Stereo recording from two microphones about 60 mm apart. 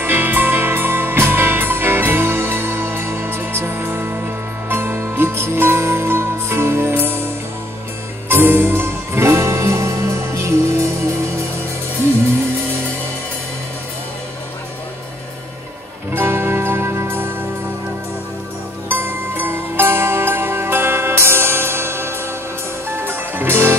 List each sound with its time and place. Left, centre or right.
0.0 s music: right
16.1 s music: right
18.9 s music: right